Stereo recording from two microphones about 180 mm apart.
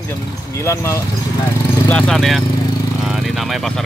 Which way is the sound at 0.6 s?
15° left (ahead or behind).